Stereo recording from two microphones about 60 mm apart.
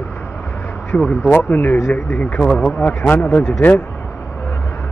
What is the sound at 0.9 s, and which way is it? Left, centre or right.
Speech, left.